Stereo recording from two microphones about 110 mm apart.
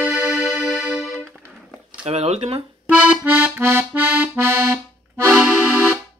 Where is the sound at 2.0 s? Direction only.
75° right (ahead or behind).